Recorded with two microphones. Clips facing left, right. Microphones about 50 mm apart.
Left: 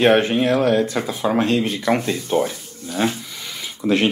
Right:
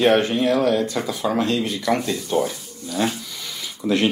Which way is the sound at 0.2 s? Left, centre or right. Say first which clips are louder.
Left 1 dB; centre.